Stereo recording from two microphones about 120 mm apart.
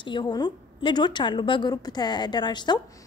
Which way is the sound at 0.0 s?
40° left (ahead or behind).